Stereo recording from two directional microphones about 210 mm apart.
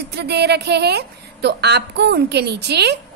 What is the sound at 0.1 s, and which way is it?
A woman's voice, 50° right (ahead or behind).